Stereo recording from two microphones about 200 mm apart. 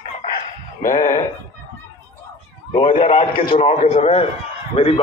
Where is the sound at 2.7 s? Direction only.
30° left (ahead or behind).